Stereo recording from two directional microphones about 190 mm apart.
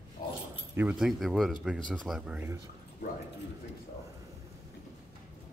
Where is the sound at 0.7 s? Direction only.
5° right (ahead or behind).